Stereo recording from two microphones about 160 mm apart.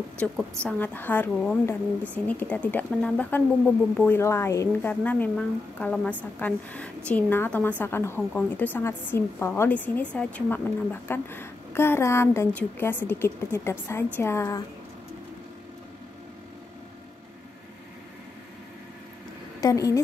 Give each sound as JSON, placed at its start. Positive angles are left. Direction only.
{"t": 0.7, "sound": "a woman's voice", "side_deg": 10}
{"t": 19.6, "sound": "a woman's voice", "side_deg": 20}